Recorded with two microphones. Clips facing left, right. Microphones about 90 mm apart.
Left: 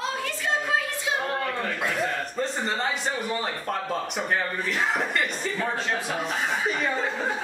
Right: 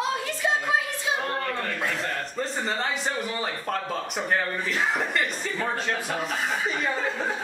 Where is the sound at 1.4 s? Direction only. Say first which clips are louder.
Left 1 dB; 5° left (ahead or behind).